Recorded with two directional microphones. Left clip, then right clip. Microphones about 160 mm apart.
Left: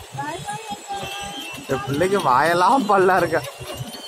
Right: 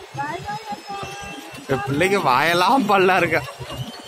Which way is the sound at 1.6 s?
20° right (ahead or behind).